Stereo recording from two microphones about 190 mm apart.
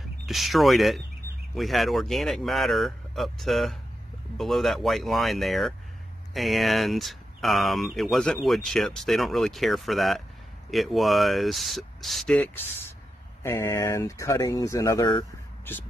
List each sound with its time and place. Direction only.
0.3 s speech: centre (ahead or behind)